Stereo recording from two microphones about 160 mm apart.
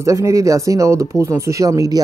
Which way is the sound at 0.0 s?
20° right (ahead or behind).